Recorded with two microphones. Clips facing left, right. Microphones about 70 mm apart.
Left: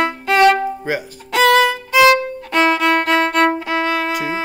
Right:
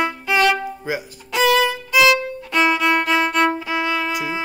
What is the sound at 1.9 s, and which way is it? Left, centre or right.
Violin, left.